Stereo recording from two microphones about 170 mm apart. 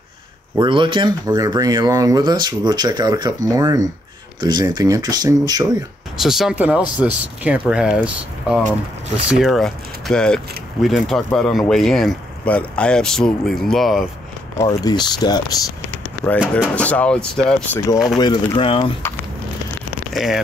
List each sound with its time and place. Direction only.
0.6 s speech: 30° right (ahead or behind)
6.1 s speech: centre (ahead or behind)
14.6 s speech: 25° left (ahead or behind)
16.7 s speech: 5° left (ahead or behind)
18.0 s speech: 25° left (ahead or behind)
20.1 s speech: centre (ahead or behind)